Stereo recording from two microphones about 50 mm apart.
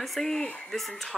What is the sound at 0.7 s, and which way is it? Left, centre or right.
Speech, centre.